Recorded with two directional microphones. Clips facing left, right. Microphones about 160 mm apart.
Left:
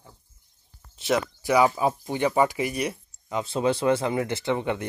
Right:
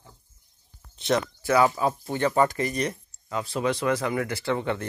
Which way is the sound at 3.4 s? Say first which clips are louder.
Left 2 dB; 25° left (ahead or behind).